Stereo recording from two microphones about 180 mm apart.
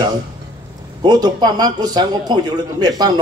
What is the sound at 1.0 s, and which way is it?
A man's voice, 20° right (ahead or behind).